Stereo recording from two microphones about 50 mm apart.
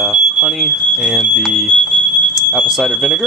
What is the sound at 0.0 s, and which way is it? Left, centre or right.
Smoke detector, centre.